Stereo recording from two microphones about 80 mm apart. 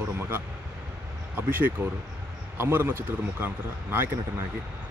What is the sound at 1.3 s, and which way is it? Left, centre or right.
A man's voice, right.